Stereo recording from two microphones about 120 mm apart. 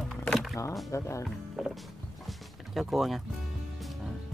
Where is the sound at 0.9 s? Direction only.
25° left (ahead or behind).